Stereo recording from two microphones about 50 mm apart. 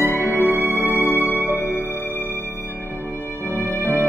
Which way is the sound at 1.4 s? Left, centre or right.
Left.